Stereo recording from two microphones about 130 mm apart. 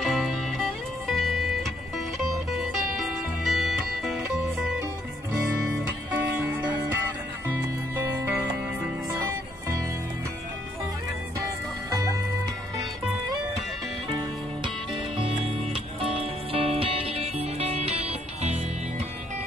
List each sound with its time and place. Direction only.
0.0 s music: centre (ahead or behind)
6.3 s music: 10° right (ahead or behind)
14.6 s music: 40° right (ahead or behind); by 19.0 s 55° right (ahead or behind)